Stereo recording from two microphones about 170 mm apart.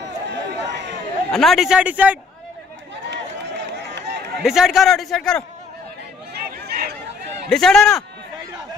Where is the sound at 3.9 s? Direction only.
80° right.